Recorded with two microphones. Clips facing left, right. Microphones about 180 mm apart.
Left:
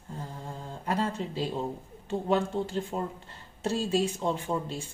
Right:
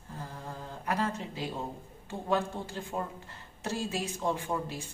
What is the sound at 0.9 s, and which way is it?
A woman's voice, 25° left (ahead or behind).